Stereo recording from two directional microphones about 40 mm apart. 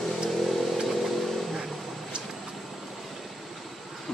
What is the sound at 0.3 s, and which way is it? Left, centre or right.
Vehicle, centre.